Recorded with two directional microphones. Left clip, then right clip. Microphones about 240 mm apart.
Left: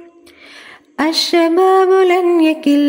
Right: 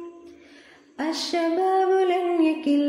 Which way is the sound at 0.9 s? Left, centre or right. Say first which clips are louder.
Left 12 dB; left.